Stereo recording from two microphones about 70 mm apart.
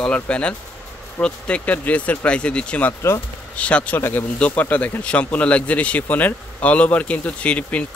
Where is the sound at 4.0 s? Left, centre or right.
Left.